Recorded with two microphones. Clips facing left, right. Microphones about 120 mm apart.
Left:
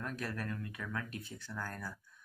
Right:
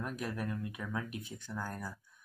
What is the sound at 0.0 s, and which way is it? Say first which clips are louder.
Speech: right 2 dB; 15° right (ahead or behind).